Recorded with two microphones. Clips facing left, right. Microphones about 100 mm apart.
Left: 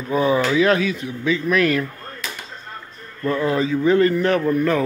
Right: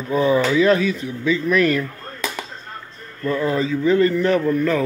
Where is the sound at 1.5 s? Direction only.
5° left (ahead or behind).